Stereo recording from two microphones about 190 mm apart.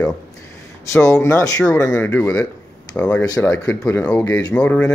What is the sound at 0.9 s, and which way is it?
Speech, 15° left (ahead or behind).